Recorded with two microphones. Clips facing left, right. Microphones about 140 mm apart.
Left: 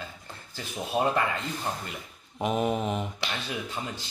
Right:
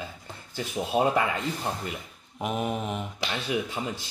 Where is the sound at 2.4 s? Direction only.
Centre (ahead or behind).